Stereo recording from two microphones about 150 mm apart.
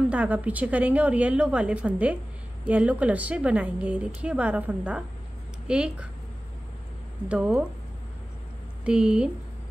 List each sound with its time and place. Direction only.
0.1 s a woman's voice: 10° right (ahead or behind)
7.2 s a woman's voice: 5° right (ahead or behind)
8.8 s a woman's voice: 5° right (ahead or behind)